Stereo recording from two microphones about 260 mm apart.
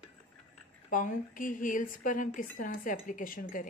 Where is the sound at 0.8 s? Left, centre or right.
Left.